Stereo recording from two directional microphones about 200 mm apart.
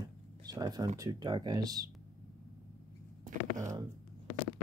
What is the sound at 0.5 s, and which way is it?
Speech, 20° right (ahead or behind).